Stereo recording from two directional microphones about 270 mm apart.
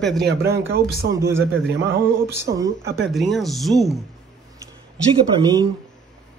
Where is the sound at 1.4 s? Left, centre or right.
Right.